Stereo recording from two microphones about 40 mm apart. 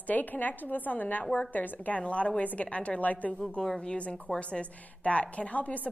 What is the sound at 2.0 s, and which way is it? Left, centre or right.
A woman's voice, left.